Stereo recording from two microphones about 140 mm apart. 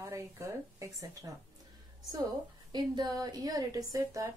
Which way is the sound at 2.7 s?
30° right (ahead or behind).